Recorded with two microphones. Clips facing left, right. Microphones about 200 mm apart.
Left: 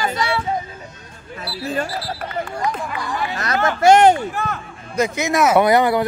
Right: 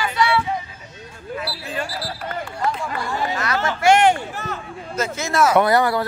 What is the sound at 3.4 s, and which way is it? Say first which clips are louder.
Speech: left 6 dB; 45° left (ahead or behind).